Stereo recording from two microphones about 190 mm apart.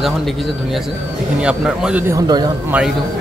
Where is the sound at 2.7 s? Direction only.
5° right (ahead or behind).